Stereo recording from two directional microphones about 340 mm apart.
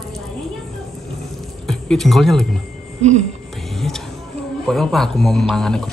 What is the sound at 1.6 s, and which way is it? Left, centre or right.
Speech, centre.